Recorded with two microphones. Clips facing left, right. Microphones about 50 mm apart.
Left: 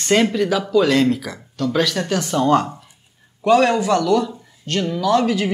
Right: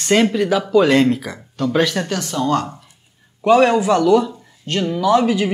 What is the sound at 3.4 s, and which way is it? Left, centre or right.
Speech, centre.